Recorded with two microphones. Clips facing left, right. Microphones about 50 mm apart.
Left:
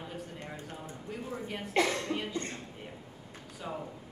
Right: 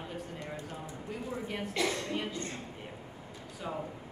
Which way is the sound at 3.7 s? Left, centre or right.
Centre.